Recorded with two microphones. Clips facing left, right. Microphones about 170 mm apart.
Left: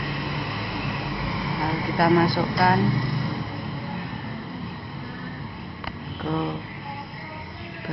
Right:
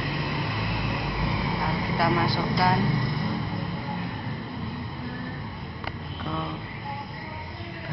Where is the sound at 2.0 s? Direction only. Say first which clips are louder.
Left 6 dB; 55° left (ahead or behind).